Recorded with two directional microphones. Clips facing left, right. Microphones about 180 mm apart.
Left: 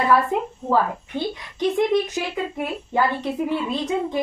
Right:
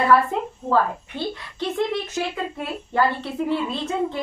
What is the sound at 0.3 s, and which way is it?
A woman's voice, 15° left (ahead or behind).